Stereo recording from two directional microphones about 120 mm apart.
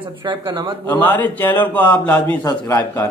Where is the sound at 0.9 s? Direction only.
15° left (ahead or behind).